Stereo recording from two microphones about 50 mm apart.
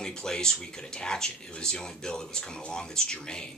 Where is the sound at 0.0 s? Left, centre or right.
Centre.